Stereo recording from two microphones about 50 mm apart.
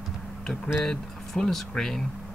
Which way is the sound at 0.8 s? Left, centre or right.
Centre.